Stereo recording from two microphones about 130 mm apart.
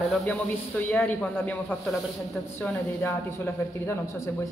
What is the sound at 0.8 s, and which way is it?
A woman's voice, 10° left (ahead or behind).